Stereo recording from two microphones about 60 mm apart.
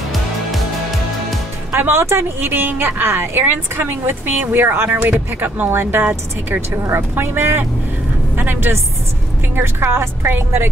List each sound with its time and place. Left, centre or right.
0.5 s music: centre
1.7 s a woman's voice: right